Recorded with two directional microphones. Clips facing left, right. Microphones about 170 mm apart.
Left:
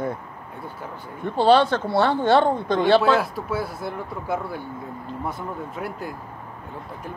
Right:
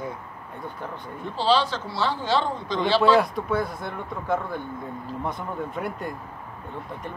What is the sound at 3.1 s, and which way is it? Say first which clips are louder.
Speech: right 2 dB; 5° left (ahead or behind).